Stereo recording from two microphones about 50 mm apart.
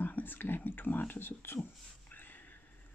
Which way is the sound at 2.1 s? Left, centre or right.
Left.